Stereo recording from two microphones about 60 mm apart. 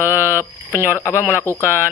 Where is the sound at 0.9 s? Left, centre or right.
Left.